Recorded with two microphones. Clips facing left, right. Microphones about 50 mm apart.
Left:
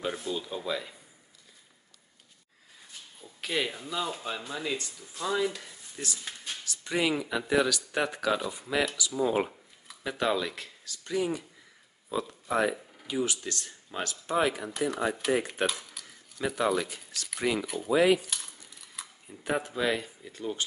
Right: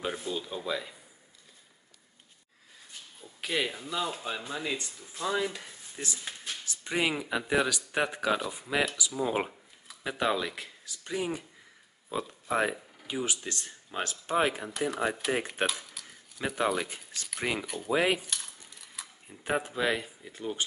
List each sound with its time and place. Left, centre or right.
0.0 s speech: centre
3.2 s speech: centre
5.3 s speech: centre
14.9 s speech: centre
15.6 s typewriter: centre
16.3 s speech: centre
17.6 s speech: centre
17.9 s speech: right
18.2 s a sound: centre
19.2 s speech: right